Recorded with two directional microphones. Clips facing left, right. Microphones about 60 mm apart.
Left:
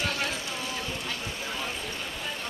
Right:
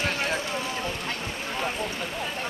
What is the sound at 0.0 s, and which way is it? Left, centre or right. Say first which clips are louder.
Run: right 3 dB; right.